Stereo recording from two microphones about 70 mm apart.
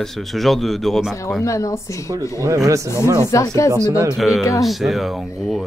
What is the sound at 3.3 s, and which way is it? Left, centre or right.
Speech, left.